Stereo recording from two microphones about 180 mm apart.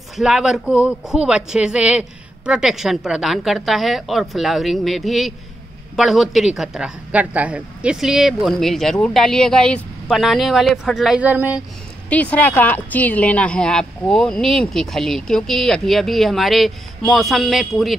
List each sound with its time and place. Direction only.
0.1 s a woman's voice: 5° right (ahead or behind)
12.1 s a woman's voice: 10° left (ahead or behind)